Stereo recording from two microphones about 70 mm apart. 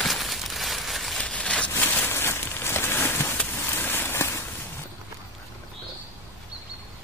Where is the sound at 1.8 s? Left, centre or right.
Left.